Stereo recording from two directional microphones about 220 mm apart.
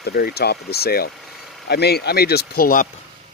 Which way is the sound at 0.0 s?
45° left (ahead or behind).